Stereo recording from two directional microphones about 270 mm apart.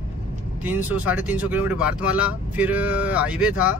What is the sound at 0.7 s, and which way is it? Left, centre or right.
Speech, centre.